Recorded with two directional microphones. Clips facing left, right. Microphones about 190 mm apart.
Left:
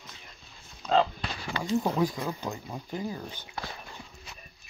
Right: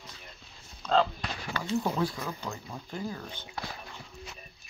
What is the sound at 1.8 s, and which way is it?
Speech, 15° left (ahead or behind).